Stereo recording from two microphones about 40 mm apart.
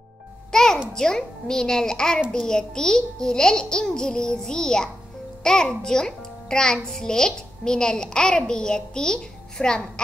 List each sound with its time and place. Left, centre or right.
0.5 s music: centre
0.9 s a child's voice: centre